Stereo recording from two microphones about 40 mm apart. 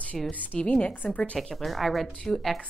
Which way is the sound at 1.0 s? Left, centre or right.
Left.